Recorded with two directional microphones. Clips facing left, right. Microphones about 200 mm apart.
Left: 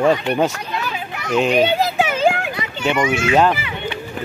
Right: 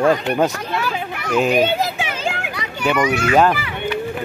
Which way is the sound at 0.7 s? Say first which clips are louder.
Right 3 dB; 50° right (ahead or behind).